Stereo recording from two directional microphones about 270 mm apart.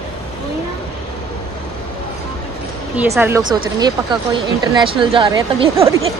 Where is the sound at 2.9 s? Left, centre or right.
Centre.